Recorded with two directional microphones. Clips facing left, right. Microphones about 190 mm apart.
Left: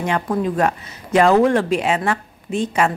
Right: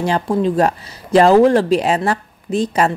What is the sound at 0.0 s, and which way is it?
Speech, 30° right (ahead or behind).